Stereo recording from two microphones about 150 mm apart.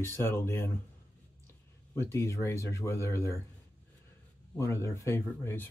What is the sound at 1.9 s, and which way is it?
Speech, 20° left (ahead or behind).